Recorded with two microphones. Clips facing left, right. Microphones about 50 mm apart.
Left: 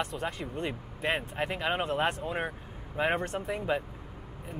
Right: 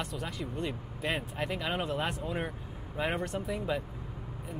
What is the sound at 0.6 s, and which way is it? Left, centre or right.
Speech, left.